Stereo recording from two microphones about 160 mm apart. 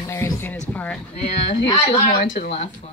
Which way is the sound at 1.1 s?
40° left (ahead or behind).